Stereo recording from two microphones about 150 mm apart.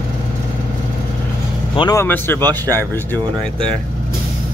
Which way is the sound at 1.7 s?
35° left (ahead or behind).